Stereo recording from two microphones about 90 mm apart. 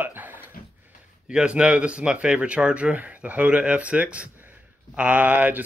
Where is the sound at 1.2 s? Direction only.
10° right (ahead or behind).